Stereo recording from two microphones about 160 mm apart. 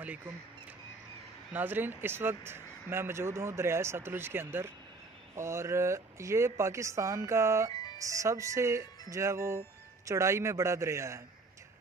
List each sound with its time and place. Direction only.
0.0 s speech: 10° right (ahead or behind)
1.5 s speech: 10° right (ahead or behind)
7.7 s music: 25° left (ahead or behind)
8.0 s speech: 20° right (ahead or behind)